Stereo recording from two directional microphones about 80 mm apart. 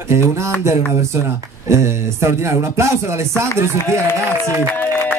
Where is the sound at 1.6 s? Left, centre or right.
Right.